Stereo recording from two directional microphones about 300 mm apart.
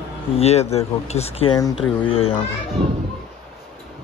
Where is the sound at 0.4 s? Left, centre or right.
Left.